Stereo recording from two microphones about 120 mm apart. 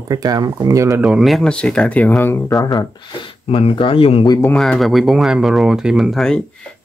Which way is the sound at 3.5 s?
50° left (ahead or behind).